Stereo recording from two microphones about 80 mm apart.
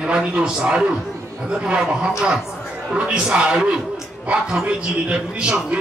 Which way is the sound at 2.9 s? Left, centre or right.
Centre.